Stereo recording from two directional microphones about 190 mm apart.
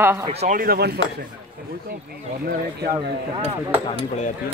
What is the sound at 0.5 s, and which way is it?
Speech, 50° right (ahead or behind).